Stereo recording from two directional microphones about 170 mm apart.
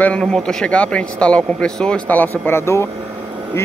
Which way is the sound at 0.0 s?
5° left (ahead or behind).